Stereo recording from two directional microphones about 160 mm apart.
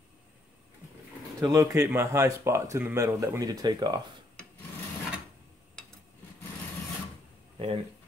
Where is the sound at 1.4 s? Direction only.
20° right (ahead or behind).